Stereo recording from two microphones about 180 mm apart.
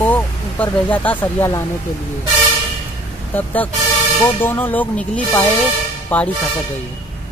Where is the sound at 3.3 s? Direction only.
10° left (ahead or behind).